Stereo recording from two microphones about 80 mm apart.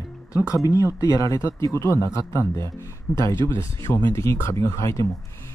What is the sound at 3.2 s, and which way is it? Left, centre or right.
Speech, right.